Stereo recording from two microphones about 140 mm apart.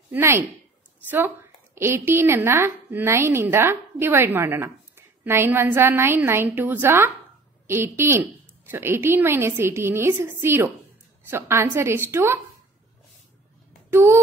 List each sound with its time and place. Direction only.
0.1 s a woman's voice: 20° right (ahead or behind)
1.8 s a woman's voice: 20° right (ahead or behind)
13.8 s a child's voice: 15° right (ahead or behind)